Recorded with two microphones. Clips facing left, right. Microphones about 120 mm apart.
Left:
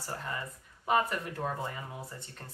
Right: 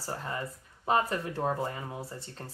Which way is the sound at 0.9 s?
30° right (ahead or behind).